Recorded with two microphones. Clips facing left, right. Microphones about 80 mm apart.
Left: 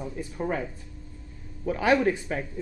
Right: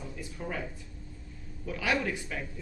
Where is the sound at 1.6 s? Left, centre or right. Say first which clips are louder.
Left 8 dB; left.